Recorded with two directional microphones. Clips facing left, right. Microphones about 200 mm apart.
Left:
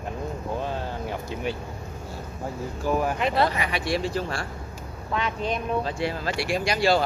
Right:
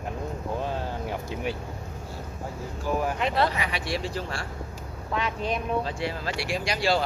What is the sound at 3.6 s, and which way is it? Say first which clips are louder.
Speech: left 4 dB; 50° left (ahead or behind).